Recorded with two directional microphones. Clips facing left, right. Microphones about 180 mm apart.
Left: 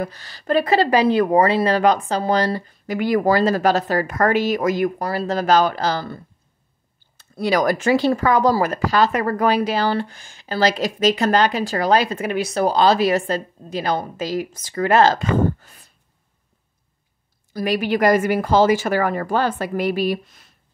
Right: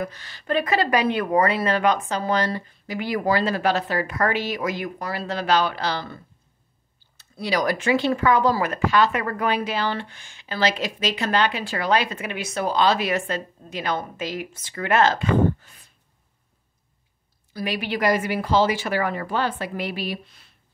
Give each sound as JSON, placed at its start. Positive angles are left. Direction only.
{"t": 0.0, "sound": "speech", "side_deg": 35}
{"t": 17.5, "sound": "speech", "side_deg": 45}